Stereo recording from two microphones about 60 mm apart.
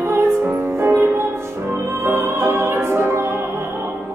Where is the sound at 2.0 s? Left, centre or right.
Right.